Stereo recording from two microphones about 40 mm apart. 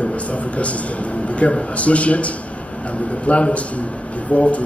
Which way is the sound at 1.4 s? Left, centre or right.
Left.